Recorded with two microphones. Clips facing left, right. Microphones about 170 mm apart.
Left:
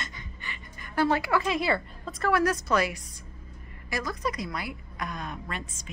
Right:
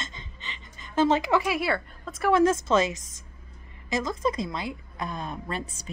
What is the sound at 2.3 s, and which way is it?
A woman's voice, 25° right (ahead or behind).